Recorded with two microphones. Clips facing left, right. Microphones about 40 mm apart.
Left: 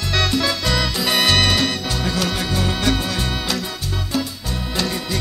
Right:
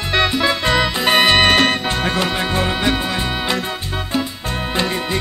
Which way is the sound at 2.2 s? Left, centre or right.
Right.